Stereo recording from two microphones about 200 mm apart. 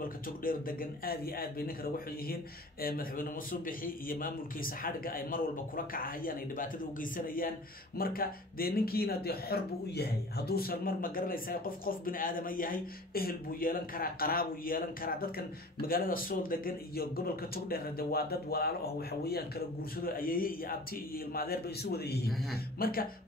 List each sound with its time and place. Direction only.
0.4 s speech: 45° left (ahead or behind)
2.8 s speech: 45° left (ahead or behind)